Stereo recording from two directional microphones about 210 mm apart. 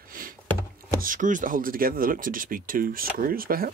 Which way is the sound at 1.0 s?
40° right (ahead or behind).